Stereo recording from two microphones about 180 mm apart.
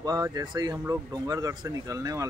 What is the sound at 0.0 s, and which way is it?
Speech, 20° right (ahead or behind).